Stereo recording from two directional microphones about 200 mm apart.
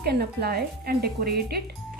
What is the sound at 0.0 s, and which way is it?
Speech, 50° right (ahead or behind).